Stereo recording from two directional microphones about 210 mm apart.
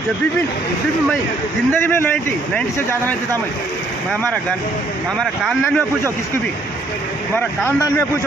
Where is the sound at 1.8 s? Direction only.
10° left (ahead or behind).